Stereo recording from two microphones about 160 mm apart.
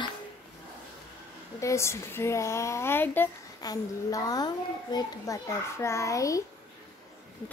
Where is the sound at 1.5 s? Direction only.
20° left (ahead or behind).